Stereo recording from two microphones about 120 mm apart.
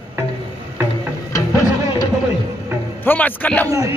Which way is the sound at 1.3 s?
25° left (ahead or behind).